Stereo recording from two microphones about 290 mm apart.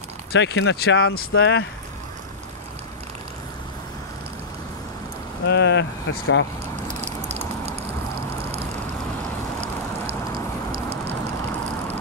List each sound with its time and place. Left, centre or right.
0.3 s speech: left
5.4 s speech: left
6.9 s a sound: right